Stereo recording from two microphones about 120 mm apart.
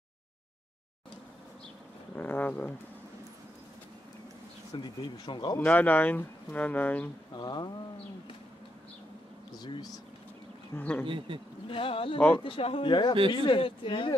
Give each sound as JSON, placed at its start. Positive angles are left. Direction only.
{"t": 2.1, "sound": "speech", "side_deg": 15}
{"t": 4.7, "sound": "speech", "side_deg": 40}
{"t": 5.6, "sound": "speech", "side_deg": 15}
{"t": 7.3, "sound": "speech", "side_deg": 35}
{"t": 9.6, "sound": "speech", "side_deg": 35}
{"t": 10.8, "sound": "speech", "side_deg": 15}
{"t": 11.1, "sound": "speech", "side_deg": -45}
{"t": 11.6, "sound": "speech", "side_deg": 50}
{"t": 12.2, "sound": "speech", "side_deg": 15}
{"t": 12.4, "sound": "speech", "side_deg": 50}